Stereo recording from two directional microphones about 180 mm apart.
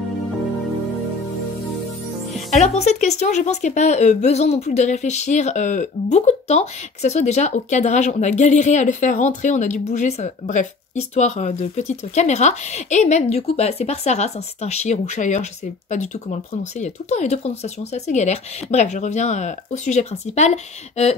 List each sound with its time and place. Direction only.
2.5 s a woman's voice: 40° left (ahead or behind)